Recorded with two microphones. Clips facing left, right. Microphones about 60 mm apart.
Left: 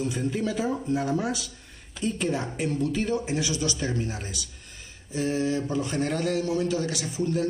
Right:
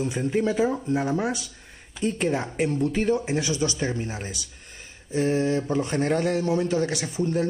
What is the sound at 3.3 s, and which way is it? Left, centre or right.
A man's voice, right.